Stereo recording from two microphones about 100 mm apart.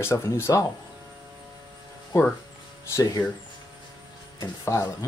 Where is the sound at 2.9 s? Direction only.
30° left (ahead or behind).